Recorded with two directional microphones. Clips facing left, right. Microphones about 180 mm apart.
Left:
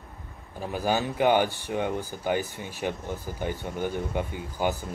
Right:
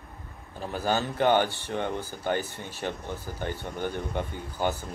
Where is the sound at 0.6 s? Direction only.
10° left (ahead or behind).